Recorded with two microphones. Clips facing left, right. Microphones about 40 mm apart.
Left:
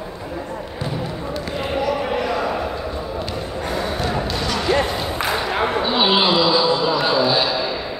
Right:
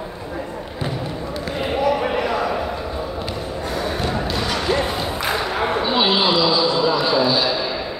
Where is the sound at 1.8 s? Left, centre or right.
Centre.